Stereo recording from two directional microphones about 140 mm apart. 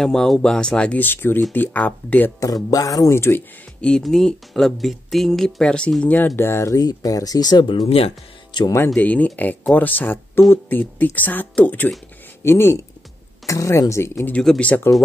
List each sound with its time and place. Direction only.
0.0 s speech: 5° left (ahead or behind)
2.4 s speech: 25° left (ahead or behind)
3.9 s speech: 5° left (ahead or behind); by 7.8 s 35° left (ahead or behind)
7.8 s speech: 45° left (ahead or behind)
8.7 s speech: 15° left (ahead or behind)
14.2 s speech: 5° left (ahead or behind)